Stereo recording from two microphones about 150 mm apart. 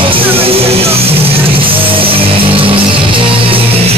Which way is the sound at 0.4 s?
40° right (ahead or behind).